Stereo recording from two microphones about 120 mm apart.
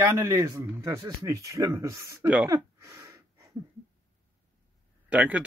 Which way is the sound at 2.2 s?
10° right (ahead or behind).